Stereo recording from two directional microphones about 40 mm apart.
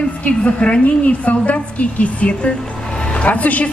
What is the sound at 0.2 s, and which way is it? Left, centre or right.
Speech, left.